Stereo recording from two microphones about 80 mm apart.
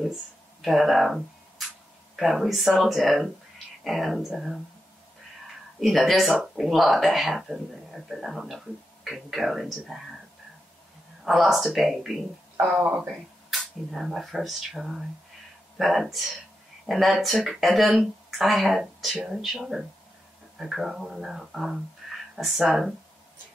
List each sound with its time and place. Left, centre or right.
0.0 s speech: centre
5.8 s speech: centre
11.2 s speech: centre
12.6 s speech: centre
13.0 s speech: centre